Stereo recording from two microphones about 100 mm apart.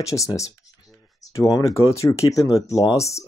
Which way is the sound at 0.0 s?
30° left (ahead or behind).